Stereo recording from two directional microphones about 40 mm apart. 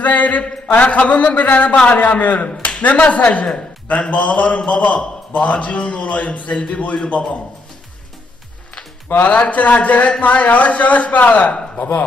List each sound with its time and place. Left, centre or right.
0.0 s a man's voice: left
6.5 s a man's voice: left
9.2 s a man's voice: left
11.5 s a man's voice: left